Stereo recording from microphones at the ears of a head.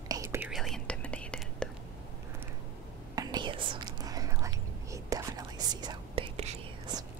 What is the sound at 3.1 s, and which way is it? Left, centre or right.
Whispering, right.